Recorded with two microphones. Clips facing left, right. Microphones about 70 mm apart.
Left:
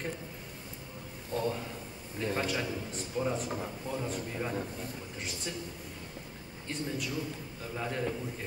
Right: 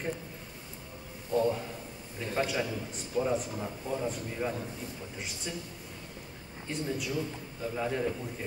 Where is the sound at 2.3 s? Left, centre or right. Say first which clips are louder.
Right 3 dB; centre.